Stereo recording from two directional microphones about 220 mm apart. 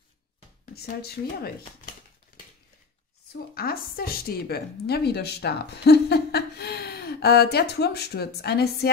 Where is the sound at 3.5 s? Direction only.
45° left (ahead or behind).